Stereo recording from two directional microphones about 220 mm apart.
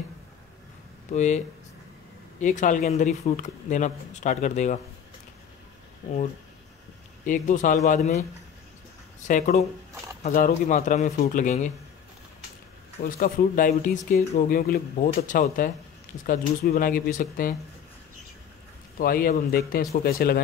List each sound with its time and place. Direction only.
1.1 s speech: 30° left (ahead or behind)
2.4 s speech: 35° left (ahead or behind)
7.2 s speech: 35° left (ahead or behind)
9.3 s speech: 35° left (ahead or behind)
13.0 s speech: 40° left (ahead or behind)
18.9 s a man's voice: 40° left (ahead or behind)